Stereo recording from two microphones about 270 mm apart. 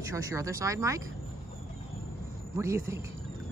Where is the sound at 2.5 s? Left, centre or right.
Centre.